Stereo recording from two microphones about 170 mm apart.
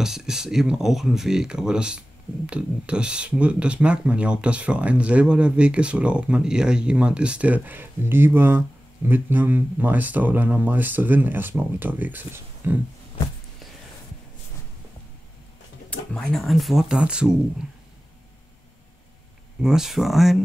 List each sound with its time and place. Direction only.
0.0 s speech: 5° right (ahead or behind)
15.9 s speech: 5° left (ahead or behind)
19.6 s speech: 5° right (ahead or behind)